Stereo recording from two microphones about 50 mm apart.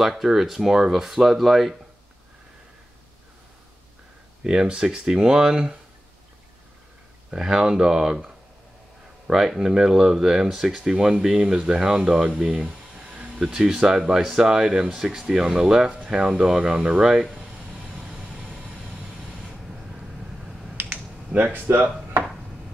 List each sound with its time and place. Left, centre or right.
0.0 s speech: centre
4.4 s speech: centre
7.2 s speech: centre
9.3 s speech: centre
12.4 s a sound: centre
13.8 s speech: centre
17.9 s vehicle: centre
20.9 s computer keyboard: right